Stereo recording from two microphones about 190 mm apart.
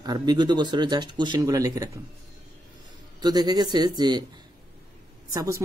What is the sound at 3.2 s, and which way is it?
Speech, 20° right (ahead or behind).